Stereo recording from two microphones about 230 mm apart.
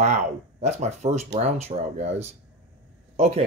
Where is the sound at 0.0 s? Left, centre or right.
Right.